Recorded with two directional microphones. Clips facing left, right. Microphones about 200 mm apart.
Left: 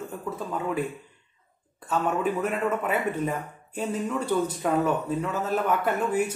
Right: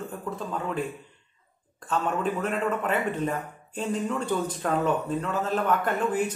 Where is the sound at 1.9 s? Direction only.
10° left (ahead or behind).